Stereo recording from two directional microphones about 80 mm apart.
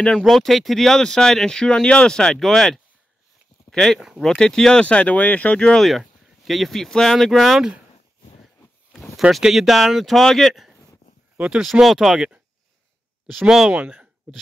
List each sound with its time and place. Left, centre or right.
0.2 s speech: centre
4.8 s speech: centre
5.9 s speech: centre
8.9 s a sound: centre
9.3 s speech: centre
11.3 s speech: centre
11.6 s speech: centre
13.3 s speech: centre
13.7 s speech: centre